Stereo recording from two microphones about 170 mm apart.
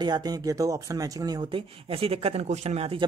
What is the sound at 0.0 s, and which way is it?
Speech, 25° right (ahead or behind).